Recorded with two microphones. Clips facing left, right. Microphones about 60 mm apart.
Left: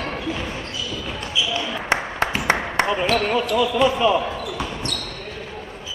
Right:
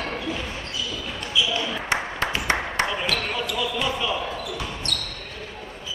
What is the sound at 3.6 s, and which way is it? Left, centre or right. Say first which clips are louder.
Speech: left 9 dB; left.